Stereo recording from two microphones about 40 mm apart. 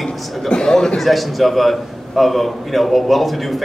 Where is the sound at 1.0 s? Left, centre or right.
Centre.